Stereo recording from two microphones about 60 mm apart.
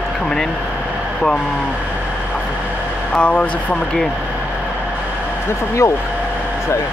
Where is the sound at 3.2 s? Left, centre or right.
Left.